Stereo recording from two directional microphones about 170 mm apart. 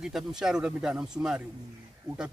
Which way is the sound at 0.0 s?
5° right (ahead or behind).